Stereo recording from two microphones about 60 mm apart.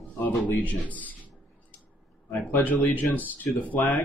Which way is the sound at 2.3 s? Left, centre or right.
Left.